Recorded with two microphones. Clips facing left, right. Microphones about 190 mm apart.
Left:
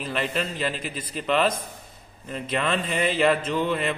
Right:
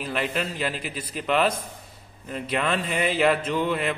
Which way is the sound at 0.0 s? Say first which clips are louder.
Even; 5° right (ahead or behind).